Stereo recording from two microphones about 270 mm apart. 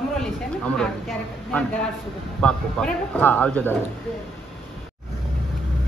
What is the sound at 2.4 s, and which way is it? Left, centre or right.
Speech, centre.